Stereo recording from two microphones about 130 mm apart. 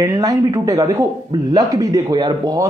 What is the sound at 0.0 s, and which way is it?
A man's voice, 25° right (ahead or behind).